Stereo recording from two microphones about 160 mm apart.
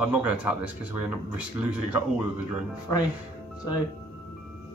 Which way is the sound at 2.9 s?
20° left (ahead or behind).